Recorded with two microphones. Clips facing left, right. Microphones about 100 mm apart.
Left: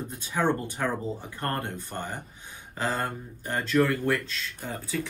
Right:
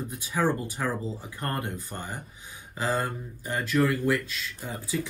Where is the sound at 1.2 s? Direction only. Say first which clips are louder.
Left 1 dB; 15° right (ahead or behind).